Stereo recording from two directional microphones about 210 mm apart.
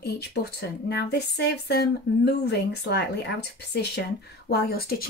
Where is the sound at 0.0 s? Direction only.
50° left (ahead or behind).